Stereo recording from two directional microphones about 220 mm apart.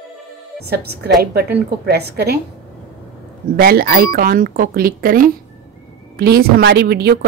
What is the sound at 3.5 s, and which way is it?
A woman's voice, 45° right (ahead or behind).